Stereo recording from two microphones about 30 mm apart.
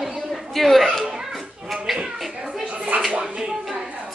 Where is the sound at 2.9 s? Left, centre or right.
Right.